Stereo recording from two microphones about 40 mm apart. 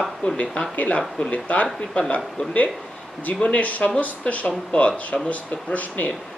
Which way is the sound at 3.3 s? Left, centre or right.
Left.